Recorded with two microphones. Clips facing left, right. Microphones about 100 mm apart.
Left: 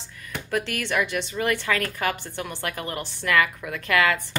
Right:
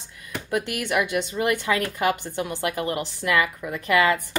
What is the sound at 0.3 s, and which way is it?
A woman's voice, 15° right (ahead or behind).